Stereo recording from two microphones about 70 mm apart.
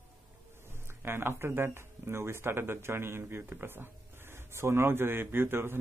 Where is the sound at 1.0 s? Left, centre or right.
Right.